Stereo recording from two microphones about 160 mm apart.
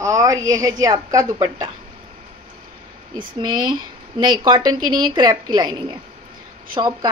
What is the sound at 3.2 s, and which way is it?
Speech, 25° right (ahead or behind).